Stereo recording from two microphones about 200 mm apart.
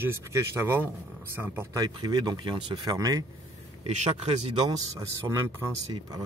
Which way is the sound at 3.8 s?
30° right (ahead or behind).